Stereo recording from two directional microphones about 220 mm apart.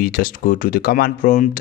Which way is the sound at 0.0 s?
40° left (ahead or behind).